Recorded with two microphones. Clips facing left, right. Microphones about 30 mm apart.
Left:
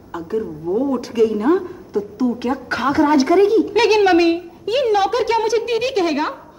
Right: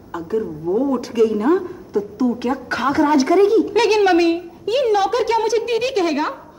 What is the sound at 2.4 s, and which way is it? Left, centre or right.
A woman's voice, centre.